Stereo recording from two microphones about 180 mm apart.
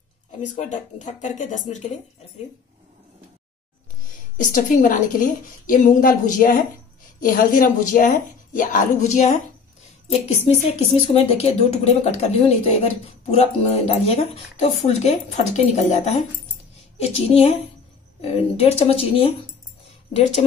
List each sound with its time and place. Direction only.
0.6 s a woman's voice: 40° left (ahead or behind)
4.4 s a woman's voice: 45° left (ahead or behind)
10.5 s speech: 35° left (ahead or behind)